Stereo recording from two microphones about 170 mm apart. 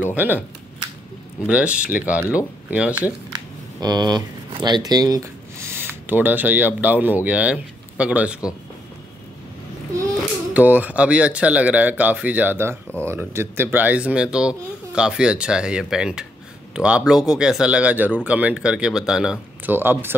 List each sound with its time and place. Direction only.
0.1 s speech: 10° right (ahead or behind)
1.5 s speech: 5° right (ahead or behind)
3.3 s camera: 25° right (ahead or behind)
4.6 s speech: 25° right (ahead or behind); by 8.4 s 10° right (ahead or behind)
10.5 s speech: 10° right (ahead or behind)